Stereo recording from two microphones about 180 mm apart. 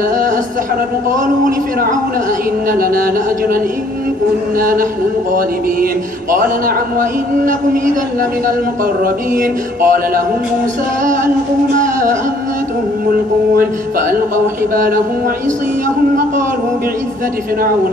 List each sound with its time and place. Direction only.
1.2 s speech: 45° right (ahead or behind)
4.6 s speech: 50° right (ahead or behind)
7.0 s speech: 50° right (ahead or behind)
9.4 s speech: 50° right (ahead or behind)
11.8 s music: 45° right (ahead or behind)